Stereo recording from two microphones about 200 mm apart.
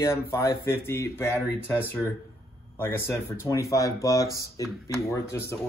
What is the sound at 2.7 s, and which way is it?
Speech, 10° left (ahead or behind).